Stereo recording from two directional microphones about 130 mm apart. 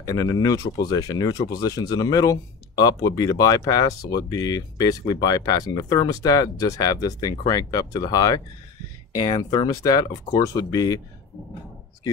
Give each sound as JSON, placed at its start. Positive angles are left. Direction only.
{"t": 0.0, "sound": "speech", "side_deg": 30}